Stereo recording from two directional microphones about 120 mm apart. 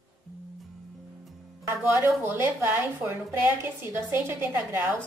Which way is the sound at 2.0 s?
20° right (ahead or behind).